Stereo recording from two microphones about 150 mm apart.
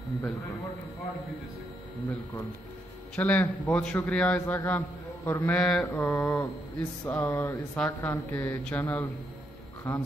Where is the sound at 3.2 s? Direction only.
10° left (ahead or behind).